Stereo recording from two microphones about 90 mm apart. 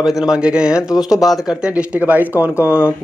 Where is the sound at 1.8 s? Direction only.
15° right (ahead or behind).